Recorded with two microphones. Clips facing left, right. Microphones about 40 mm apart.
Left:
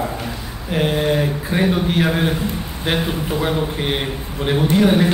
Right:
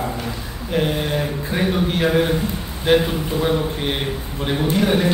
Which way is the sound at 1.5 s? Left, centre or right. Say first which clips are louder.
Left 1 dB; centre.